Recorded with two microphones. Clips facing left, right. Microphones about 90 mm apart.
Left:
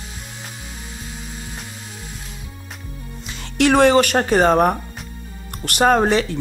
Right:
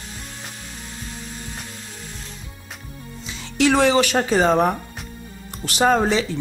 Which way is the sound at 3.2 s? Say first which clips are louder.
Left 2 dB; 55° left (ahead or behind).